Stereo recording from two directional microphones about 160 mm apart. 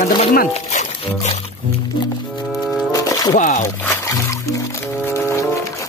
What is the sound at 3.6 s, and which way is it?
Music, 20° left (ahead or behind).